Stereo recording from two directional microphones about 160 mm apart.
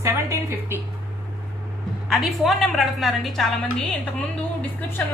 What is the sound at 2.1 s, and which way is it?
A woman's voice, centre (ahead or behind).